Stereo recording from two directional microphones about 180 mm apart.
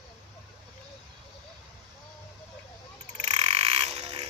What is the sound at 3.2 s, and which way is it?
Frog, 35° right (ahead or behind).